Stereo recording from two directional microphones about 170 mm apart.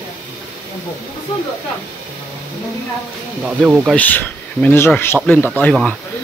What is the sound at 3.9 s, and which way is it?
Speech, 10° left (ahead or behind).